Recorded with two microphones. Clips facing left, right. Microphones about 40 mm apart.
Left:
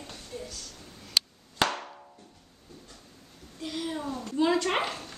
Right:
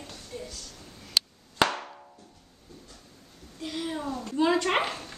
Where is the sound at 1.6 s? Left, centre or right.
Centre.